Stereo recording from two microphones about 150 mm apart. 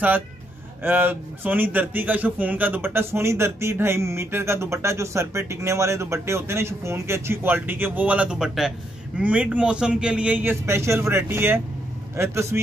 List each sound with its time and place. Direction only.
0.8 s speech: 15° right (ahead or behind)